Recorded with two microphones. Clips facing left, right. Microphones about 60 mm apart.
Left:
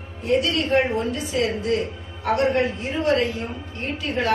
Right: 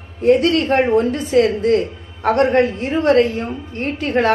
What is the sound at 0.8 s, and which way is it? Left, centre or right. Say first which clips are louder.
Speech: right 9 dB; right.